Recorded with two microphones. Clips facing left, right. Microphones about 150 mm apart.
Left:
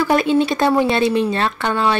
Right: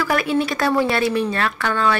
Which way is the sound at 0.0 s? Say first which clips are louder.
Left 4 dB; 25° left (ahead or behind).